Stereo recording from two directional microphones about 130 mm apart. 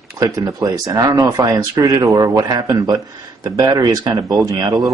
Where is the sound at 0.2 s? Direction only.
25° right (ahead or behind).